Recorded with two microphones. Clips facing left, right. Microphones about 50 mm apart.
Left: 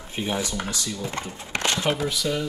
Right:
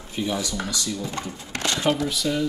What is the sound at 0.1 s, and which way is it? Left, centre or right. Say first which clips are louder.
Speech: right 1 dB; left.